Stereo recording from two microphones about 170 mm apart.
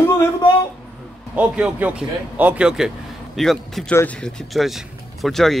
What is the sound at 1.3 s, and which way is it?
Speech, 5° right (ahead or behind).